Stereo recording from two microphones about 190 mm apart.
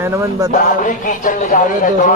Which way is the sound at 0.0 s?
15° right (ahead or behind).